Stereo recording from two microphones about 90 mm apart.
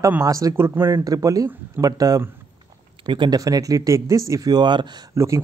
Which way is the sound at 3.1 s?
55° right (ahead or behind).